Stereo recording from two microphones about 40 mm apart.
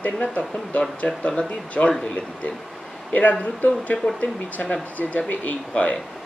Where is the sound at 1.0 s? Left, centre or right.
Left.